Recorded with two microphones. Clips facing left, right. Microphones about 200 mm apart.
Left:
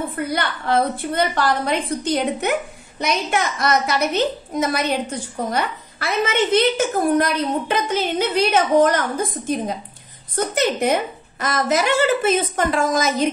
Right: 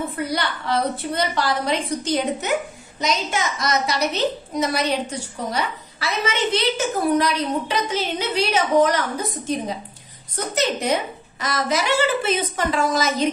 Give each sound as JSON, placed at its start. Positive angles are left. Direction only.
{"t": 0.1, "sound": "a woman's voice", "side_deg": 50}